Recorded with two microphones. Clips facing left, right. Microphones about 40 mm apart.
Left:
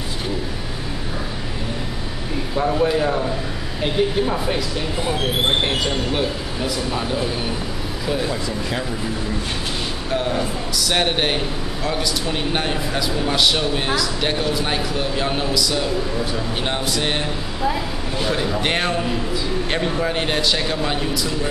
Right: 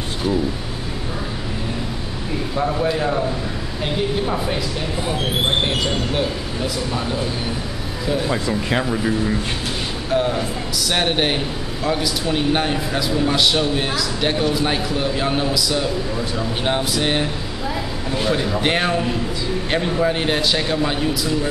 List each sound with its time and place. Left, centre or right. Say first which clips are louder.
2.5 s a man's voice: left 2 dB; centre
6.1 s speech: even; centre
8.3 s speech: right 4 dB; right
10.1 s a man's voice: right 2 dB; centre